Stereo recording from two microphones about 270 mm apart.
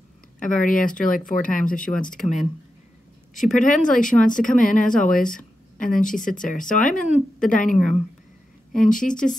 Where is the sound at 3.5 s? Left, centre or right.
Left.